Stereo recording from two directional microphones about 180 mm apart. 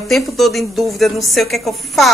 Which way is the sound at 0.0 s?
Centre (ahead or behind).